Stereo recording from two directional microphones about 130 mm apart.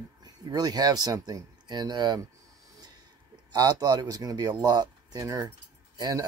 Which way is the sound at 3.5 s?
30° right (ahead or behind).